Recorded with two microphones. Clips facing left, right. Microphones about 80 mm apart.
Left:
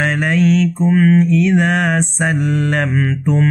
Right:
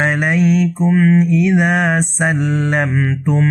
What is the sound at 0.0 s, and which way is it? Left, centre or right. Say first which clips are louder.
Mantra: even; centre.